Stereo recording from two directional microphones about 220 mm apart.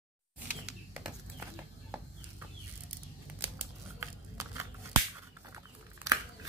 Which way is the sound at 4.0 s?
10° right (ahead or behind).